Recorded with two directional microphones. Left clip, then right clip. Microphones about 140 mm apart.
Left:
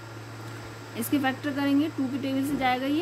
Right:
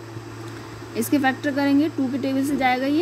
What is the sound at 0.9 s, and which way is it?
Speech, 25° right (ahead or behind).